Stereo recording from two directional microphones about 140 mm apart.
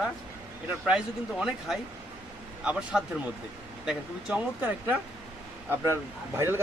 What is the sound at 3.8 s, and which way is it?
Speech, 10° right (ahead or behind).